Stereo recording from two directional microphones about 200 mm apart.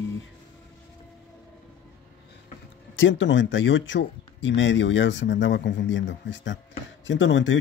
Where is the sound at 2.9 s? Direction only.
70° left (ahead or behind).